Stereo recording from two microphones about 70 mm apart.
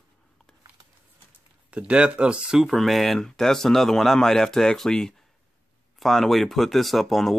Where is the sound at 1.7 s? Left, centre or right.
Centre.